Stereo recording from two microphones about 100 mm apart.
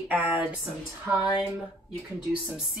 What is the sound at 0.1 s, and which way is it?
Speech, 15° right (ahead or behind).